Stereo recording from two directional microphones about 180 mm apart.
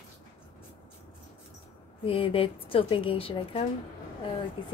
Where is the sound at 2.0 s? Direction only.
30° left (ahead or behind).